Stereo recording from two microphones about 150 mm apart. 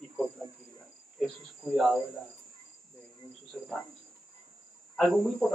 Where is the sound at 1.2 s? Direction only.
Centre (ahead or behind).